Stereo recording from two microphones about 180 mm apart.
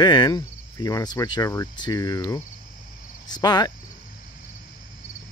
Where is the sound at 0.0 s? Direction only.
25° left (ahead or behind).